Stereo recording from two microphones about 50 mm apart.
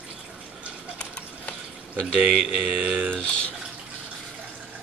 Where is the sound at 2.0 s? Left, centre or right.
Centre.